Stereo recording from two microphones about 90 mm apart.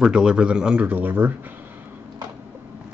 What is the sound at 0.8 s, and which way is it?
Speech, 20° right (ahead or behind).